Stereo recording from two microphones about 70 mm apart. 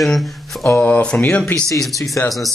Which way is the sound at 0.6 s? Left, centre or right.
Left.